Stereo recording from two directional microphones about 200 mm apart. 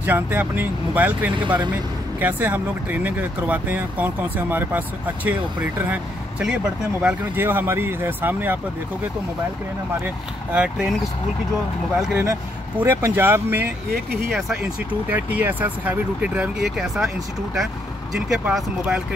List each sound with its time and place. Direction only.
0.0 s speech: 10° right (ahead or behind)
1.3 s speech: 25° right (ahead or behind)
2.1 s speech: 10° right (ahead or behind)
10.0 s speech: 5° right (ahead or behind)
12.1 s speech: 10° right (ahead or behind)
18.1 s speech: centre (ahead or behind)